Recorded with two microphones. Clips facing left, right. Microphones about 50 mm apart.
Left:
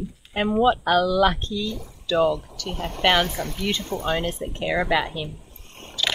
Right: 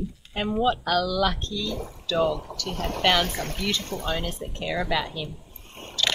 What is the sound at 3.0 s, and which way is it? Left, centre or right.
Speech, left.